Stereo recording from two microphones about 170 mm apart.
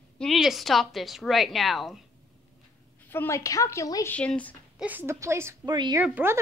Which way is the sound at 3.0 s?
15° left (ahead or behind).